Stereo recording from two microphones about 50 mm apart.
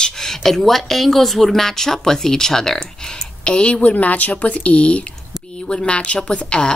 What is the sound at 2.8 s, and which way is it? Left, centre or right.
Speech, left.